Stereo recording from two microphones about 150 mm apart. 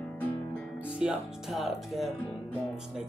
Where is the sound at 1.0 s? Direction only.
5° right (ahead or behind).